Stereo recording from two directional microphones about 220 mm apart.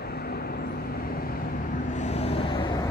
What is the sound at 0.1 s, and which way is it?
Vehicle, 45° left (ahead or behind).